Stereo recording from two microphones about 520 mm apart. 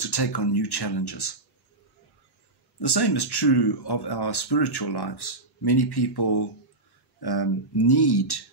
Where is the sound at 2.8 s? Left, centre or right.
Left.